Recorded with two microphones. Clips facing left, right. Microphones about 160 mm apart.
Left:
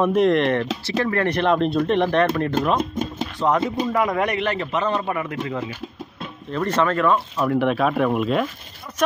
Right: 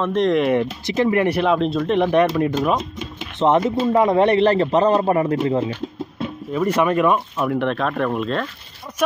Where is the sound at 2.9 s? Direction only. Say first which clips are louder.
Left 6 dB; 45° left (ahead or behind).